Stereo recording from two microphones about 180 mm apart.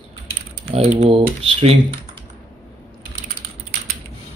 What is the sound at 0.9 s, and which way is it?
Speech, 30° right (ahead or behind).